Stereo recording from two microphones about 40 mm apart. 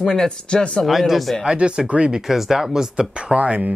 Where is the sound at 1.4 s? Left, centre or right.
Right.